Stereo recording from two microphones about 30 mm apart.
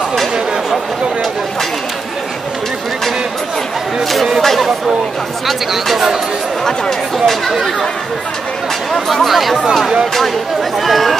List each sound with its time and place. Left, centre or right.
5.5 s speech: centre
6.6 s speech: centre
9.1 s speech: centre
10.8 s speech: centre